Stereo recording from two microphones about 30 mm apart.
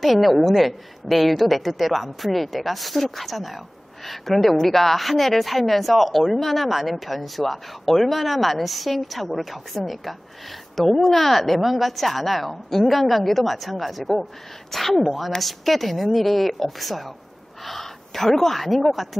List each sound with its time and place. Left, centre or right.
0.0 s a woman's voice: centre
10.8 s a woman's voice: centre